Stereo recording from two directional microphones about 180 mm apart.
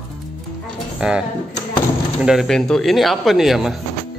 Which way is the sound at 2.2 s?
Centre (ahead or behind).